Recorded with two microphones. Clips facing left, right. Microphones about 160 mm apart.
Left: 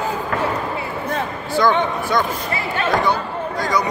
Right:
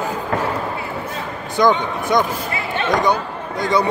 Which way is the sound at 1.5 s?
20° right (ahead or behind).